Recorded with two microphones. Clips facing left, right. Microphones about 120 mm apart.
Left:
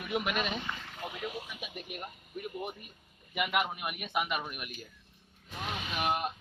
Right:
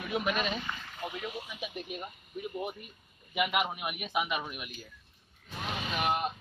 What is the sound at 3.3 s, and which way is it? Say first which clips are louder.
Speech: right 1 dB; 5° right (ahead or behind).